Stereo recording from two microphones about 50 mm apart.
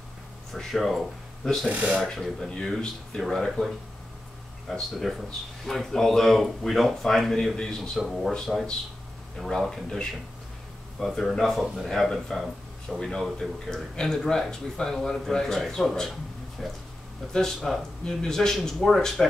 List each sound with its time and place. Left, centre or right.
0.5 s speech: centre
1.7 s speech: right
2.1 s speech: centre
17.3 s speech: centre